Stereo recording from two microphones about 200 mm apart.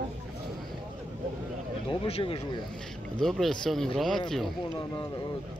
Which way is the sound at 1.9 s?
30° left (ahead or behind).